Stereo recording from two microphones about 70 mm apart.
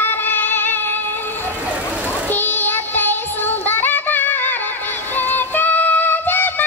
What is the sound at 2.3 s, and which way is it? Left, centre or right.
Child singing, left.